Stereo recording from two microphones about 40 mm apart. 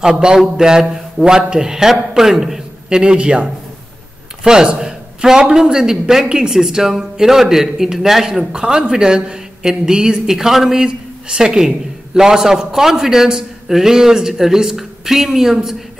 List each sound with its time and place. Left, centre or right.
0.0 s a man's voice: centre
3.0 s a man's voice: right
8.5 s a woman's voice: centre